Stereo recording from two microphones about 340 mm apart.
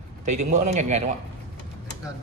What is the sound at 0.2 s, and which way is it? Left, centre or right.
Speech, right.